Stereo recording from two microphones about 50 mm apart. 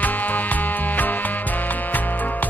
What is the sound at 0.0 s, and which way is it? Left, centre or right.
Music, left.